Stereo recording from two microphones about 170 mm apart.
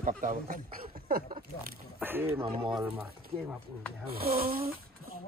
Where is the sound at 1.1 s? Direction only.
60° right (ahead or behind).